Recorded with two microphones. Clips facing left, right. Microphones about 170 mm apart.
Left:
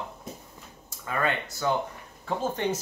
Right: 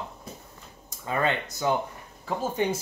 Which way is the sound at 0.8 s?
20° right (ahead or behind).